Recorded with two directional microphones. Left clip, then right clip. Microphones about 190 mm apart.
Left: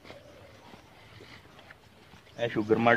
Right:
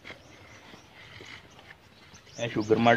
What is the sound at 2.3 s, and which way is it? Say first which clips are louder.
Speech: right 1 dB; 15° right (ahead or behind).